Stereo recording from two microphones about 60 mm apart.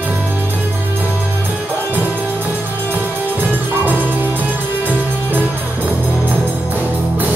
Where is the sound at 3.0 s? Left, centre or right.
Right.